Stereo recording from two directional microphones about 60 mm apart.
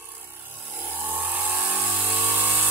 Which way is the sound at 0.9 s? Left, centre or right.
Right.